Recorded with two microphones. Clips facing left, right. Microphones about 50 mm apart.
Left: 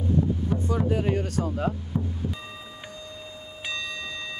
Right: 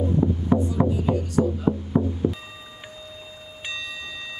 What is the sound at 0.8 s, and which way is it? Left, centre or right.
Music, left.